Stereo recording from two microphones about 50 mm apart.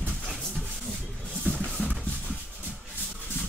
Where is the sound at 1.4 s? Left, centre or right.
Left.